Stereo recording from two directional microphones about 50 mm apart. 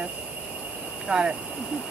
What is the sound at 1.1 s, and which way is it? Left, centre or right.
Speech, centre.